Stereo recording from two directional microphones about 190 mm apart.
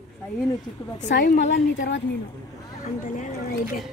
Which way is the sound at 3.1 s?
50° left (ahead or behind).